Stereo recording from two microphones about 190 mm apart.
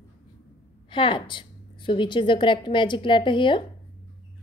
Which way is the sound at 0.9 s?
25° left (ahead or behind).